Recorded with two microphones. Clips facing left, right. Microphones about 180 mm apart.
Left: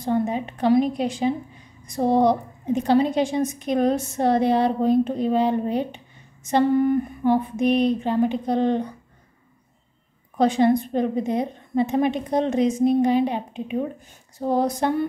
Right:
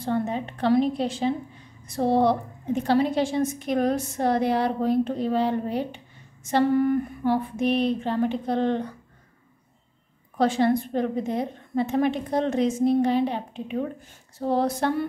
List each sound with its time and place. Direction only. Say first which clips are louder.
0.0 s a woman's voice: left 3 dB; 15° left (ahead or behind)
10.3 s a woman's voice: left 3 dB; 20° left (ahead or behind)